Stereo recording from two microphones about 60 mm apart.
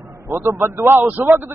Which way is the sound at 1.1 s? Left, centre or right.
Right.